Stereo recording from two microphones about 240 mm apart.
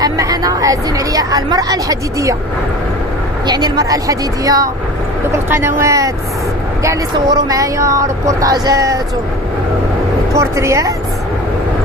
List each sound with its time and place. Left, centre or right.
0.0 s speech: centre
3.4 s speech: centre
10.3 s speech: centre